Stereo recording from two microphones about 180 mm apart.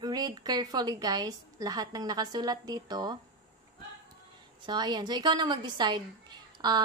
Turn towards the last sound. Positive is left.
turn(degrees=-25)  # may be behind; listen again after turning